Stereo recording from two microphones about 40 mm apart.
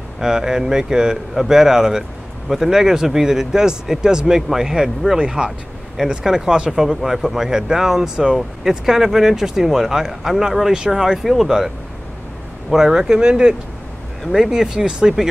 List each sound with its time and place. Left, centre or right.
0.2 s speech: centre
6.2 s speech: centre
12.7 s speech: centre